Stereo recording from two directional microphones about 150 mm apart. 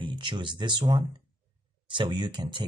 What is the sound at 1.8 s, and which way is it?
Speech, 30° right (ahead or behind).